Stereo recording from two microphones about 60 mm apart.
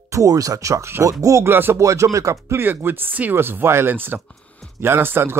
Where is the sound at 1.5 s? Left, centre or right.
Right.